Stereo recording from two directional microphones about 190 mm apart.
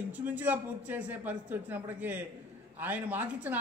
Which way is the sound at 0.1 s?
10° right (ahead or behind).